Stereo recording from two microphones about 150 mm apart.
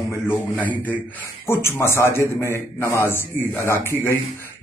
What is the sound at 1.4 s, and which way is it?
A man's voice, 15° left (ahead or behind).